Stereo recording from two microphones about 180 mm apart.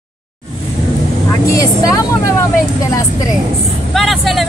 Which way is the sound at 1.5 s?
20° left (ahead or behind).